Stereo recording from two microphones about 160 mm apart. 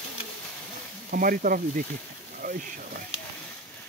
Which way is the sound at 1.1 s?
60° right (ahead or behind).